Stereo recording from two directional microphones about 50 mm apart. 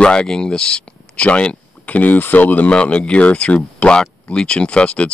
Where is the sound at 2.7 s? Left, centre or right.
Left.